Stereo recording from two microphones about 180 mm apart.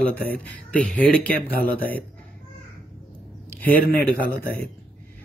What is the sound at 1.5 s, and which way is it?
Speech, 55° left (ahead or behind).